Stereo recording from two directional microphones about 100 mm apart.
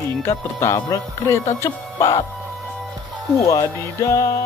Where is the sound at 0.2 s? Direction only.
30° left (ahead or behind).